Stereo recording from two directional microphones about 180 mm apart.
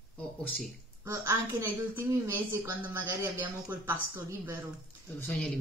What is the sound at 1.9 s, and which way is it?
Speech, 15° right (ahead or behind).